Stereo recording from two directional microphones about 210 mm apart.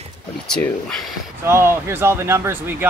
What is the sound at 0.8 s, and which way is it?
Speech, centre (ahead or behind).